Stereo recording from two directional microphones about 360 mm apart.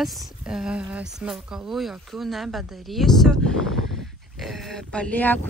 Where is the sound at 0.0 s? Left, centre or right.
Centre.